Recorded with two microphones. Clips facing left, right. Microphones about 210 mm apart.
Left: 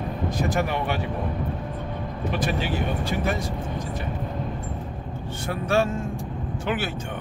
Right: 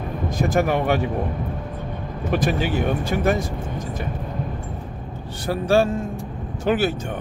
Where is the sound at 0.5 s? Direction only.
45° right (ahead or behind).